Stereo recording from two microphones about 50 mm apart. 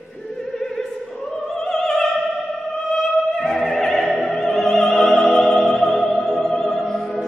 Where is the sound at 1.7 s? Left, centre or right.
Centre.